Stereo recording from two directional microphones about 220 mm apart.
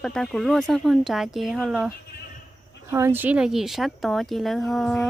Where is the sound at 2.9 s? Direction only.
10° right (ahead or behind).